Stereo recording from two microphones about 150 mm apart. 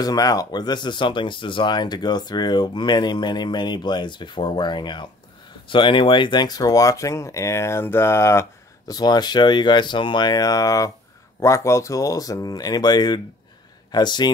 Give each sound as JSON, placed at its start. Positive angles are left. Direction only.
{"t": 0.0, "sound": "speech", "side_deg": 25}